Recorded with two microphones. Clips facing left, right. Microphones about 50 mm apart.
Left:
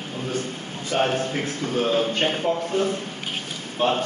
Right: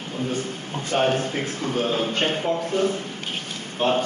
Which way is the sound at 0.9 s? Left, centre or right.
Right.